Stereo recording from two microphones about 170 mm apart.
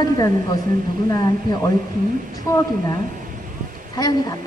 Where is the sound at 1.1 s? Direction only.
20° left (ahead or behind).